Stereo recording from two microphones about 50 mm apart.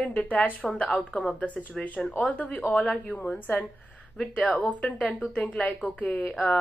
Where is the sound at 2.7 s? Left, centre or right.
Centre.